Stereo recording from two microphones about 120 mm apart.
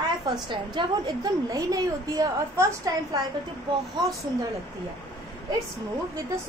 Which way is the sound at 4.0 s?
40° right (ahead or behind).